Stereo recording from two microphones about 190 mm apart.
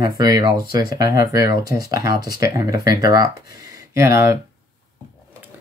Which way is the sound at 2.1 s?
55° left (ahead or behind).